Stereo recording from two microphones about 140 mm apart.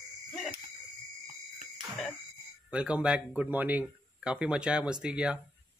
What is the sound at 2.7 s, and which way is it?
Speech, 10° right (ahead or behind).